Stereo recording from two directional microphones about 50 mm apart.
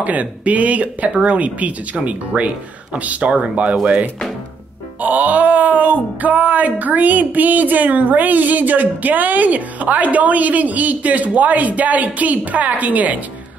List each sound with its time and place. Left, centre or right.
0.0 s speech: right
3.8 s speech: right